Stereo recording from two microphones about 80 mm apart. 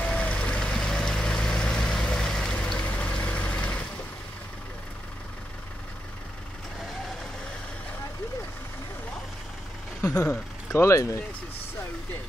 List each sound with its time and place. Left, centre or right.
0.0 s vehicle: centre
10.0 s speech: centre
10.7 s speech: left